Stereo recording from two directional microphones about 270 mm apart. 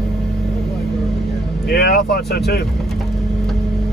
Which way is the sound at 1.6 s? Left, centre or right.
Left.